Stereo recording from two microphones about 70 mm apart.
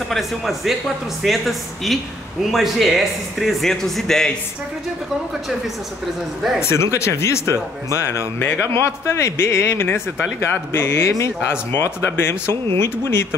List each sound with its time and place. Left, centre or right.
0.1 s speech: centre
6.6 s a man's voice: left